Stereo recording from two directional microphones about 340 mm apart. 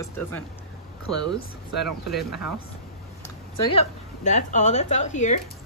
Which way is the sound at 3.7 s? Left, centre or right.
Centre.